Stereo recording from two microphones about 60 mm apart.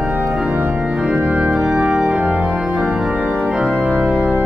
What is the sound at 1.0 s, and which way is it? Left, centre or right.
Organ, centre.